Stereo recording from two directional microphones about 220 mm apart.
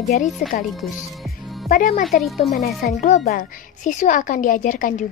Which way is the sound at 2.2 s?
Centre (ahead or behind).